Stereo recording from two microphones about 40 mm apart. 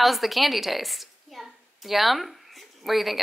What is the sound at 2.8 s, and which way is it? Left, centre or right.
Speech, centre.